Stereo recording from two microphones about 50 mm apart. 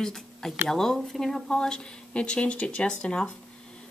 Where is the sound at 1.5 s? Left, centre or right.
Centre.